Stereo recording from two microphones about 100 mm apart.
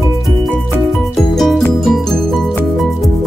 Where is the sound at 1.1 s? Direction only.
5° left (ahead or behind).